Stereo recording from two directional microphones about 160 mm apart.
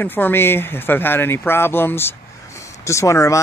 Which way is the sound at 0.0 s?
10° left (ahead or behind).